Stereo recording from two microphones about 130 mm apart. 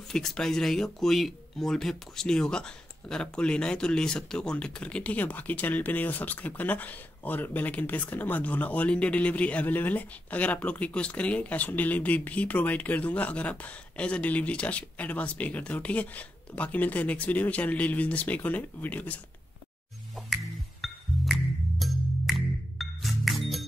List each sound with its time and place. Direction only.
0.1 s speech: 5° left (ahead or behind)
20.8 s music: centre (ahead or behind)